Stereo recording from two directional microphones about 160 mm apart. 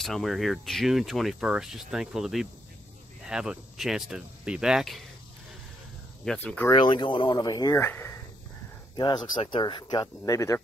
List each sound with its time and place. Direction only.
0.0 s speech: centre (ahead or behind)
6.2 s speech: 10° left (ahead or behind)
6.7 s speech: 30° left (ahead or behind)
8.9 s speech: 25° left (ahead or behind)